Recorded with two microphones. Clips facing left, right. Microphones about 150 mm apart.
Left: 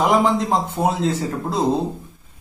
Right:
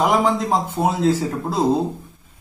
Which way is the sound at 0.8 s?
10° left (ahead or behind).